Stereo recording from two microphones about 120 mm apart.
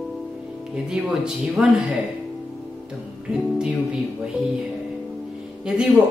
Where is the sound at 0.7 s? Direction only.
5° right (ahead or behind).